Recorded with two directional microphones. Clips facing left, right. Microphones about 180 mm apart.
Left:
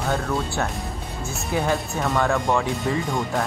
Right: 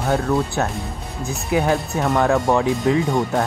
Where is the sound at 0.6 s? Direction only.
15° right (ahead or behind).